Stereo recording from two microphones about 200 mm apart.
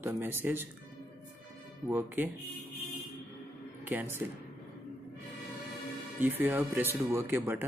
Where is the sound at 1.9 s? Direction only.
10° right (ahead or behind).